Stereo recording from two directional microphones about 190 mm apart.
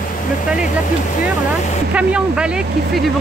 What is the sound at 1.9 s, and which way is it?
Speech, 5° right (ahead or behind).